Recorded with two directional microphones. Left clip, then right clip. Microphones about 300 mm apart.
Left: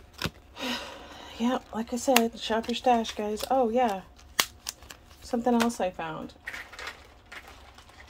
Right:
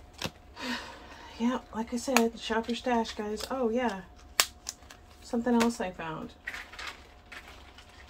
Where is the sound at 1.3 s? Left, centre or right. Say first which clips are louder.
Left 3 dB; centre.